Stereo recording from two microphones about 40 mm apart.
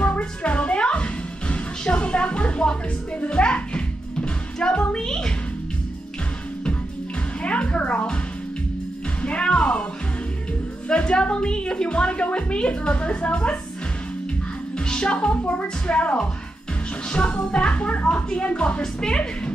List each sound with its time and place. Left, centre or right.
0.2 s music: left
7.4 s music: left
9.2 s music: left
10.9 s a woman's voice: left
14.9 s a woman's voice: left